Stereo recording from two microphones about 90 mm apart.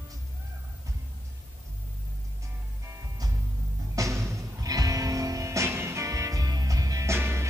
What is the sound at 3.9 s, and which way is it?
Music, 35° right (ahead or behind).